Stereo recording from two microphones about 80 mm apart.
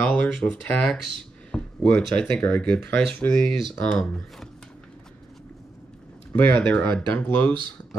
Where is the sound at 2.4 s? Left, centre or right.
Centre.